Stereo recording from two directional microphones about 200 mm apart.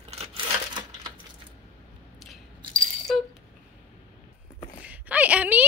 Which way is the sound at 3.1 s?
Centre (ahead or behind).